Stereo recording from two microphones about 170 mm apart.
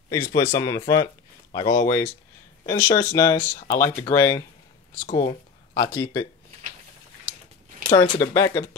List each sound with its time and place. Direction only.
0.1 s speech: 15° left (ahead or behind)
5.0 s speech: 25° left (ahead or behind)
7.9 s speech: 25° left (ahead or behind)